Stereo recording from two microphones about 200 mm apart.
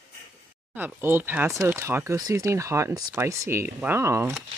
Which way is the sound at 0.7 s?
10° right (ahead or behind).